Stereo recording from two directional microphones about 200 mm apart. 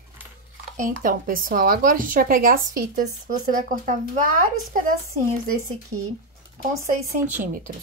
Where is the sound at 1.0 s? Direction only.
45° right (ahead or behind).